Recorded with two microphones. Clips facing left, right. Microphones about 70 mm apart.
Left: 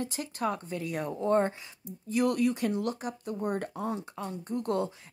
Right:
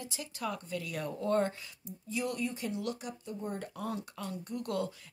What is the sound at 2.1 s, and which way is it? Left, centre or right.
Speech, left.